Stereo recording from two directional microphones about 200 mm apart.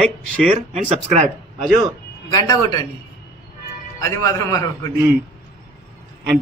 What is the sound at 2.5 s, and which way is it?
Speech, 20° left (ahead or behind).